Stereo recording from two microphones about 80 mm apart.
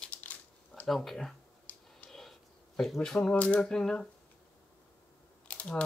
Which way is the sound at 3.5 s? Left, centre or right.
Centre.